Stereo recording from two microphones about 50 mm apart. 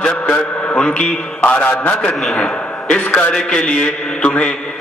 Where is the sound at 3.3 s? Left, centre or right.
Centre.